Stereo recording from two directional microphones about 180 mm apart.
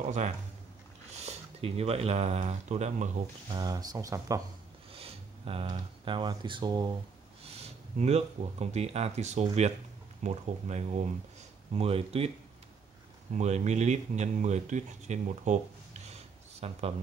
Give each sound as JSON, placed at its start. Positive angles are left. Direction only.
{"t": 1.2, "sound": "speech", "side_deg": -35}
{"t": 3.5, "sound": "speech", "side_deg": -20}
{"t": 4.9, "sound": "speech", "side_deg": -30}
{"t": 7.4, "sound": "speech", "side_deg": -35}
{"t": 13.3, "sound": "speech", "side_deg": -40}